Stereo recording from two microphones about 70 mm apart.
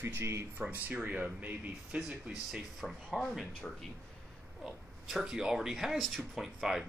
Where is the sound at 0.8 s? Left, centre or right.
Right; by 3.0 s centre.